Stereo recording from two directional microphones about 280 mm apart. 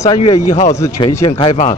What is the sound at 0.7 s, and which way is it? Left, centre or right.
Speech, centre.